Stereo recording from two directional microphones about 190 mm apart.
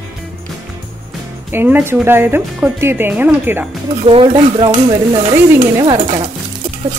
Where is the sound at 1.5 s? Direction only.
10° right (ahead or behind).